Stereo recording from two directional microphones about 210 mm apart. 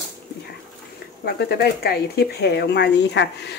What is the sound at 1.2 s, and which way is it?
Speech, 50° left (ahead or behind).